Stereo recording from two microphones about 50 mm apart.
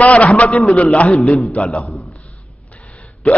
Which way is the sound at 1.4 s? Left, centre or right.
Left.